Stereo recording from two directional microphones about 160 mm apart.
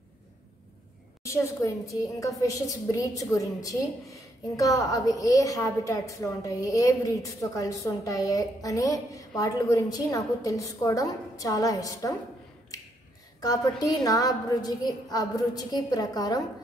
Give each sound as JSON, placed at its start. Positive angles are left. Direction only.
{"t": 1.2, "sound": "a woman's voice", "side_deg": 20}
{"t": 13.4, "sound": "a woman's voice", "side_deg": 25}